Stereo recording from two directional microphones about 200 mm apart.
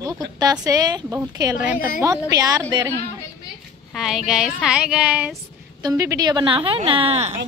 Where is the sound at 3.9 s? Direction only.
Centre (ahead or behind); by 7.3 s 30° right (ahead or behind).